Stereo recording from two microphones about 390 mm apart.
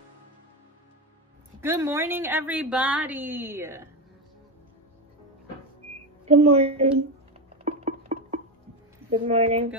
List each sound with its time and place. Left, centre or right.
1.6 s a woman's voice: centre
6.2 s speech: centre
7.6 s music: centre
9.2 s speech: centre